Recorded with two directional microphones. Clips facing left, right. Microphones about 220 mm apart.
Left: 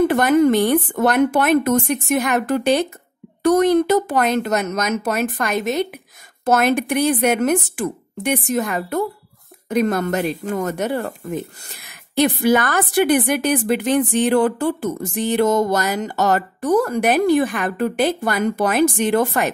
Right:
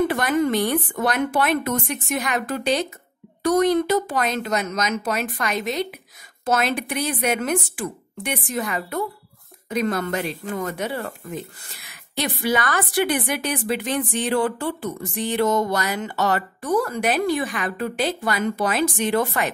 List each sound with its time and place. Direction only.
0.1 s speech: 45° left (ahead or behind)